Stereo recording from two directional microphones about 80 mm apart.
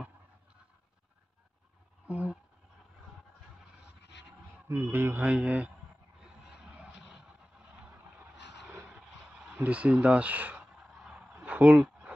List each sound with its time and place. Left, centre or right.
2.0 s speech: centre
4.6 s speech: right; by 5.7 s centre
6.5 s vehicle: centre
9.5 s speech: centre
11.3 s a sound: centre